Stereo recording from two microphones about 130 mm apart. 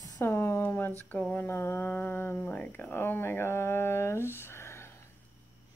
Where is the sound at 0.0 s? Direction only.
20° left (ahead or behind).